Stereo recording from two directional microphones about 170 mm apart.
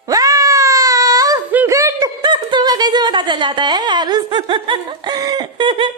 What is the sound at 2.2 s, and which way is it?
Speech, 25° right (ahead or behind).